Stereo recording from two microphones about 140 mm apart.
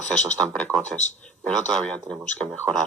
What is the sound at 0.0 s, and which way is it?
Speech, 60° left (ahead or behind).